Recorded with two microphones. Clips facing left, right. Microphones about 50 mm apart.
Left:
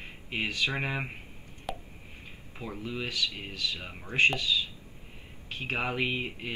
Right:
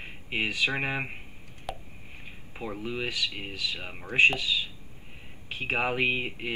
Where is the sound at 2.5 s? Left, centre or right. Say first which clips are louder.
Right 3 dB; centre.